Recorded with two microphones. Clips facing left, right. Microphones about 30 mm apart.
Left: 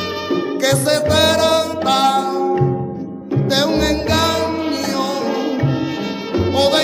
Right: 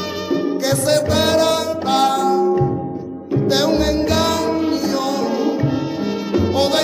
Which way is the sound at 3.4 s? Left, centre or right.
Left.